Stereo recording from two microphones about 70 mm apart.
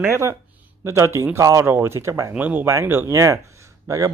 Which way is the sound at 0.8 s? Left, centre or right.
Right.